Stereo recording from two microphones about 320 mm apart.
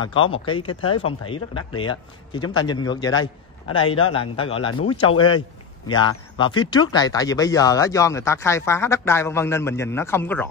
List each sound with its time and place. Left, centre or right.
0.0 s speech: centre